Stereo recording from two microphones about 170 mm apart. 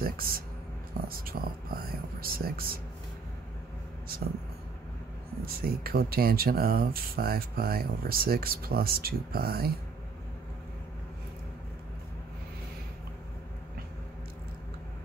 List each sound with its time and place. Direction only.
0.0 s a sound: 60° right (ahead or behind)
1.0 s whispering: 60° right (ahead or behind)
5.4 s speech: 65° right (ahead or behind)